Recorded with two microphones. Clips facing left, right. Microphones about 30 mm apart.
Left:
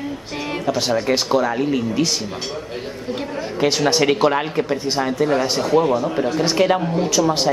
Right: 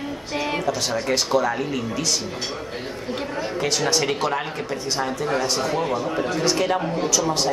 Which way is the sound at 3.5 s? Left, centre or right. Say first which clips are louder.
Left 6 dB; left.